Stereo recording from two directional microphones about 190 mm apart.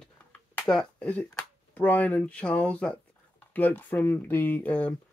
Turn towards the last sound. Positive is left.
turn(degrees=5)  # may be behind; listen again after turning